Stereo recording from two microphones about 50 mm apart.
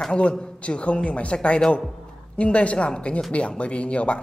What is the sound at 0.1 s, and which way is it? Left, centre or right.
Speech, left.